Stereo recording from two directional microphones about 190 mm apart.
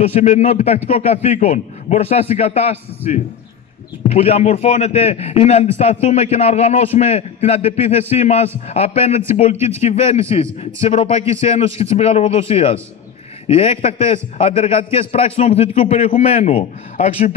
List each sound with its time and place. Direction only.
0.0 s a man's voice: 35° left (ahead or behind)